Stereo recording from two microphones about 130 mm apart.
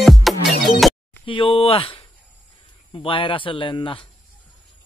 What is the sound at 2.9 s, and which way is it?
Speech, 40° left (ahead or behind).